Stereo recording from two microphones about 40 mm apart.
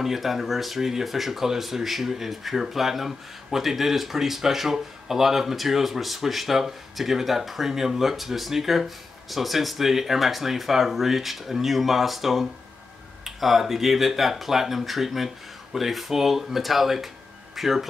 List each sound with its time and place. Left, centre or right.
0.0 s speech: centre